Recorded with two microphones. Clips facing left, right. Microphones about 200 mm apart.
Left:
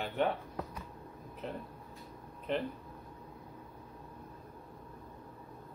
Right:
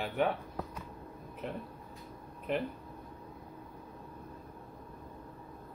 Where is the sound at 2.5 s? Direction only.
10° right (ahead or behind).